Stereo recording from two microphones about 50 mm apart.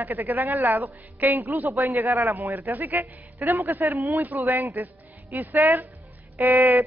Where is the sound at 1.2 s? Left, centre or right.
Right.